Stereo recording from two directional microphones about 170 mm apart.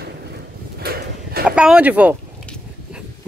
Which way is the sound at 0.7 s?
65° right (ahead or behind).